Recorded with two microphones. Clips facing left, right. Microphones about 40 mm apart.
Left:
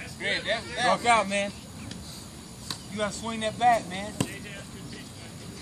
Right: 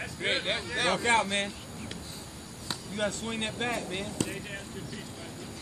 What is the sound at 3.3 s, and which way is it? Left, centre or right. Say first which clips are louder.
Speech: left 9 dB; right.